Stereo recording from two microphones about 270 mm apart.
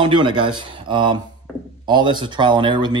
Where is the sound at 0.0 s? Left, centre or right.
Centre.